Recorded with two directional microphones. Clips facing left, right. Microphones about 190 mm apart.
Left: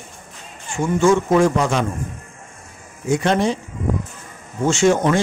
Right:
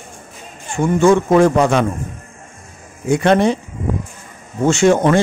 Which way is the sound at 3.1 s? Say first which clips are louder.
Right 5 dB; 60° right (ahead or behind).